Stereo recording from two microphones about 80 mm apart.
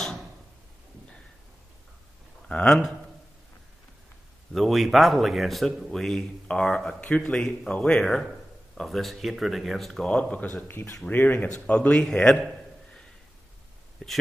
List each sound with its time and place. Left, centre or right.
2.4 s speech: centre
4.5 s a man's voice: centre
10.7 s a man's voice: left
12.1 s a man's voice: centre